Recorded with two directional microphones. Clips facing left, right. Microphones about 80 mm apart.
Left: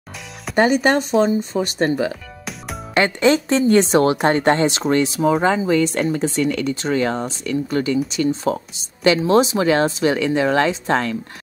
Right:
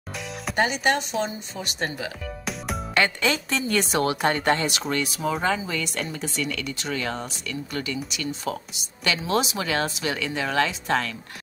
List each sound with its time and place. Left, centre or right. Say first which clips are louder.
0.6 s speech: left 7 dB; left
2.9 s speech: left 8 dB; left